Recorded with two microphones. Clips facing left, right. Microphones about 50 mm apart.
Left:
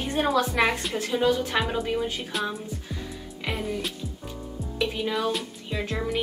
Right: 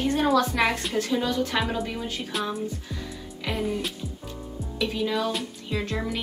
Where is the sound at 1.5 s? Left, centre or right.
Centre.